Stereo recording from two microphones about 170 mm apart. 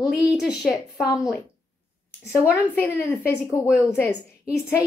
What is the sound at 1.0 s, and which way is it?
Speech, 20° left (ahead or behind).